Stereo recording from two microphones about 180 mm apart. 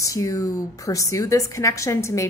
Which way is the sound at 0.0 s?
20° left (ahead or behind).